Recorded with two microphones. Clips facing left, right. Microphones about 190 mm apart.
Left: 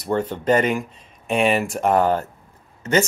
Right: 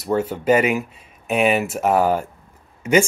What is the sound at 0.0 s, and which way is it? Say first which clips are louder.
Speech: right 2 dB; 5° right (ahead or behind).